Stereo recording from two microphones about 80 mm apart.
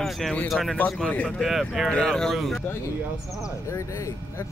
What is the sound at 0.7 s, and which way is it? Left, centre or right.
Speech, centre.